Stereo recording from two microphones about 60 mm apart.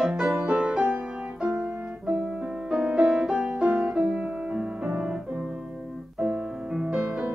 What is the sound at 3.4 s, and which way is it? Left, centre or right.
Music, right.